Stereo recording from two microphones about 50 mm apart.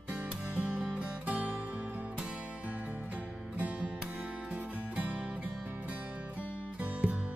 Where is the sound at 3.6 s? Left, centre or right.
Right.